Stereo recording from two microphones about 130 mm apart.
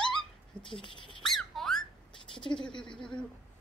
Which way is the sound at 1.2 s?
Centre (ahead or behind).